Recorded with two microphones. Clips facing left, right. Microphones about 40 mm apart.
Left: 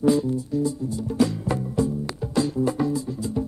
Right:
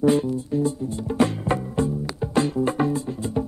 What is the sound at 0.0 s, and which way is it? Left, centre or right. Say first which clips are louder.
Music: right 1 dB; right.